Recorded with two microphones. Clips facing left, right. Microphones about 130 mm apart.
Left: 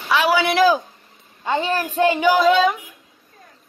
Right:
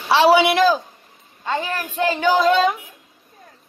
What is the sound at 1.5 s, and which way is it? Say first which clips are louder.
Speech: left 3 dB; 20° left (ahead or behind).